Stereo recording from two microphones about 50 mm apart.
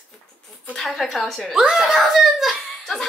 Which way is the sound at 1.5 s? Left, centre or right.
Centre.